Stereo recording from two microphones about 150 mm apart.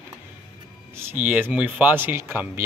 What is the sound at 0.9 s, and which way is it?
Speech, 15° right (ahead or behind).